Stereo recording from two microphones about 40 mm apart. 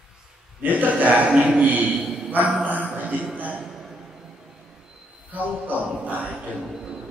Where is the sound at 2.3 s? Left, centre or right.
Right.